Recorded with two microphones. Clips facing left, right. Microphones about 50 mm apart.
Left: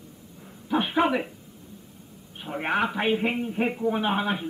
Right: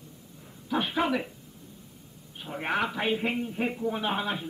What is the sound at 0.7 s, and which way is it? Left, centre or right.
Speech, centre.